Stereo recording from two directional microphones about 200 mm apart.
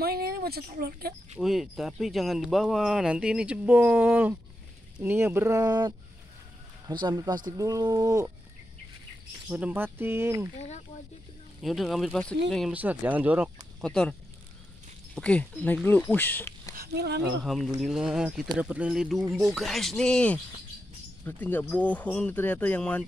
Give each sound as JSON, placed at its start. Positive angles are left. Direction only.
{"t": 0.0, "sound": "speech", "side_deg": -50}
{"t": 1.4, "sound": "speech", "side_deg": 0}
{"t": 9.5, "sound": "speech", "side_deg": -10}
{"t": 11.6, "sound": "speech", "side_deg": 0}
{"t": 13.7, "sound": "speech", "side_deg": 5}
{"t": 15.1, "sound": "speech", "side_deg": 5}
{"t": 16.7, "sound": "a sound", "side_deg": -50}
{"t": 17.7, "sound": "speech", "side_deg": 0}